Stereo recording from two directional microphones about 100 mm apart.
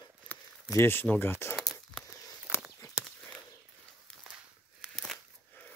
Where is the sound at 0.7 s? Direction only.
25° left (ahead or behind).